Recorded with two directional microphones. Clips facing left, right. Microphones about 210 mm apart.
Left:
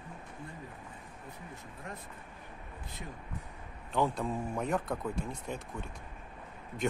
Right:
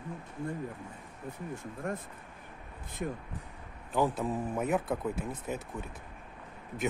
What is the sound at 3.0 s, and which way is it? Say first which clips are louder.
Speech: right 11 dB; 55° right (ahead or behind).